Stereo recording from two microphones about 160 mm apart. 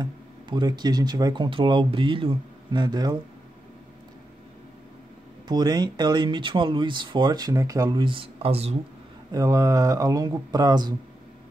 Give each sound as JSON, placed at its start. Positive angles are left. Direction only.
{"t": 0.0, "sound": "speech", "side_deg": -25}
{"t": 5.5, "sound": "speech", "side_deg": -25}
{"t": 9.3, "sound": "speech", "side_deg": -20}